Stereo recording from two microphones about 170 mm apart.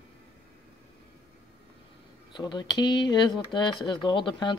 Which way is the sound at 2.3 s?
25° left (ahead or behind).